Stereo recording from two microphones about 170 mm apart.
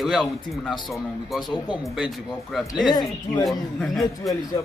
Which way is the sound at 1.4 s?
25° left (ahead or behind).